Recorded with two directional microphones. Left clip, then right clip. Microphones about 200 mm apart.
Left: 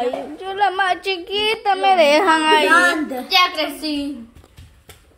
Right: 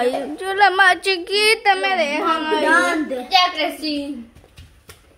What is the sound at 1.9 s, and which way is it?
Speech, 55° left (ahead or behind).